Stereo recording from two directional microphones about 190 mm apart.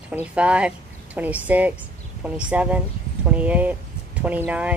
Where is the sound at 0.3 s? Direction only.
5° right (ahead or behind).